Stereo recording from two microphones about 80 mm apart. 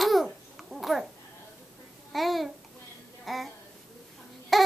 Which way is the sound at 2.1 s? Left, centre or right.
Centre.